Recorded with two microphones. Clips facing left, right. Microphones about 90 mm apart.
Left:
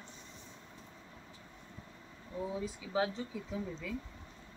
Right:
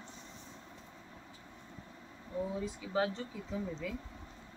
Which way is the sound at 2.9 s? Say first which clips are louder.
Even; 5° left (ahead or behind).